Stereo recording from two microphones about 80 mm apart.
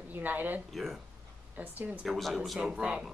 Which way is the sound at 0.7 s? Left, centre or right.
Centre.